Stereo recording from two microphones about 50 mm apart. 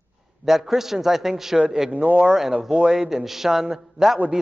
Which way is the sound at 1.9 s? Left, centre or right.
Right.